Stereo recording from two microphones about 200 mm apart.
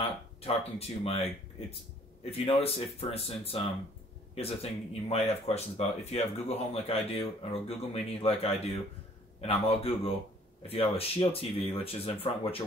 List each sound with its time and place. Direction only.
0.4 s speech: 30° left (ahead or behind)
2.3 s speech: 30° left (ahead or behind)